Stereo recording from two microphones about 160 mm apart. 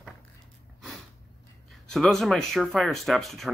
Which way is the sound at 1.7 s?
Centre (ahead or behind).